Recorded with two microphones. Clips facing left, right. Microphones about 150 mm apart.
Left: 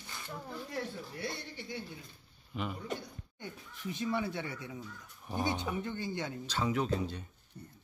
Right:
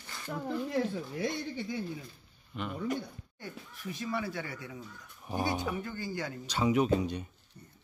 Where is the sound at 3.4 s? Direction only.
20° left (ahead or behind).